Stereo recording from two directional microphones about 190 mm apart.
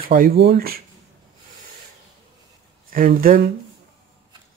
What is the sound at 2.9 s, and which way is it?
Speech, 50° right (ahead or behind).